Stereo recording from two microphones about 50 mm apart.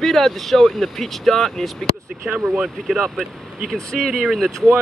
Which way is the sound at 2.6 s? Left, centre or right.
Centre.